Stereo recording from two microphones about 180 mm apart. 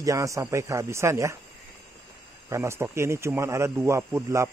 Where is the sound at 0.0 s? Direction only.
20° right (ahead or behind).